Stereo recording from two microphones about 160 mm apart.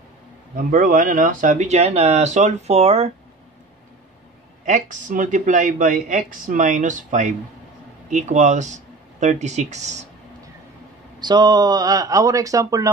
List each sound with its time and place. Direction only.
0.6 s speech: 60° right (ahead or behind); by 3.1 s 40° right (ahead or behind)
4.6 s speech: 50° right (ahead or behind)
11.1 s speech: 25° right (ahead or behind)